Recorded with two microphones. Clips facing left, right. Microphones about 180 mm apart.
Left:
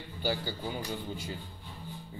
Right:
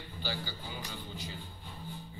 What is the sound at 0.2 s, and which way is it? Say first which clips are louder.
Speech: left 7 dB; 55° left (ahead or behind).